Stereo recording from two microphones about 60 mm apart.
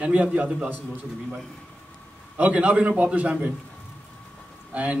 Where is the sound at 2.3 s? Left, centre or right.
Right.